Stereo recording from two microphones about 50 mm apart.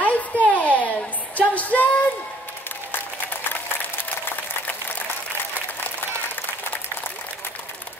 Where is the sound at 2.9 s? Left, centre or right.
Left.